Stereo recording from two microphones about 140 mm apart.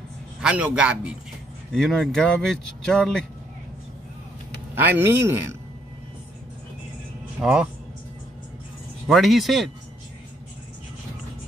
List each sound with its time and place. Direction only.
0.4 s speech: 10° right (ahead or behind)
4.7 s speech: 15° right (ahead or behind)
7.4 s speech: 5° right (ahead or behind)
9.0 s speech: centre (ahead or behind)